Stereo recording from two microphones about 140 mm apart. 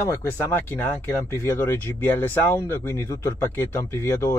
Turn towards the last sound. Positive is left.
turn(degrees=20)  # may be behind; listen again after turning